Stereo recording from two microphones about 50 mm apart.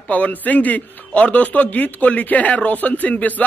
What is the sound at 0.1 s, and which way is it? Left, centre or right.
A man's voice, left.